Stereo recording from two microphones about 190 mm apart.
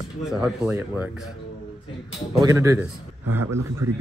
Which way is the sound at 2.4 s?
15° right (ahead or behind).